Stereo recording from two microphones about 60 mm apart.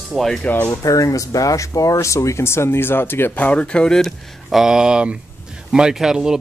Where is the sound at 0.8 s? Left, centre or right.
Left; by 4.0 s centre.